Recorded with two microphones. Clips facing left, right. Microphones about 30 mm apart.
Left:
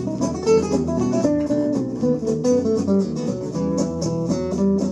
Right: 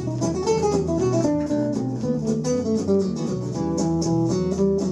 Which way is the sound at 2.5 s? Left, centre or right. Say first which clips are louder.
Left 1 dB; centre.